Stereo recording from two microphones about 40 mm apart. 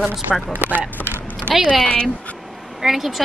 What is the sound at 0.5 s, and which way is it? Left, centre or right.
Speech, left.